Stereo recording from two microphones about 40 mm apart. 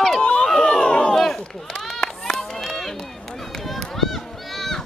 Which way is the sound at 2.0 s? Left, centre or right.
Centre.